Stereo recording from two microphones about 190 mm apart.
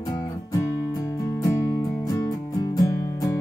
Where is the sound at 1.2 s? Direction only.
15° left (ahead or behind).